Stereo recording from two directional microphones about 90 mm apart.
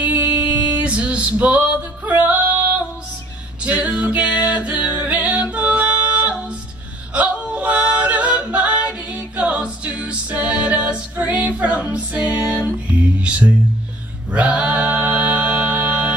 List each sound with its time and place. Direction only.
0.0 s music: 20° right (ahead or behind)
3.6 s music: 15° right (ahead or behind)
7.2 s singing: 15° right (ahead or behind)
14.3 s music: 15° right (ahead or behind)